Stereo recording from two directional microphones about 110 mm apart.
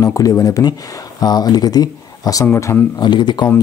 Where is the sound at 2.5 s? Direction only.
25° left (ahead or behind).